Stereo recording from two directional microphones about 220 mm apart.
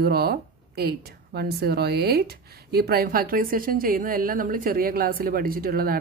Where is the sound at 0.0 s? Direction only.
45° right (ahead or behind).